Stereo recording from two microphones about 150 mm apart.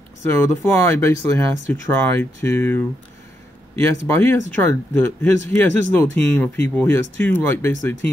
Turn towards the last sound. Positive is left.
turn(degrees=15)  # may be behind; listen again after turning